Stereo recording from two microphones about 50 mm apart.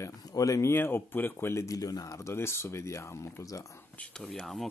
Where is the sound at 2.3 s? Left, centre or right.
Left.